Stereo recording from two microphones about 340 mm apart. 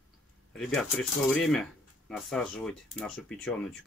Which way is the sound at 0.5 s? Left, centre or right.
Centre.